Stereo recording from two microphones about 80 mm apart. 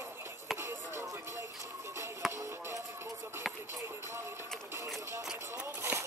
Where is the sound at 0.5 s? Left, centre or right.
Right.